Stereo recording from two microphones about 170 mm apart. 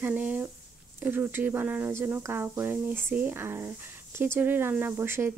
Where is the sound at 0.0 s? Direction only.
10° right (ahead or behind).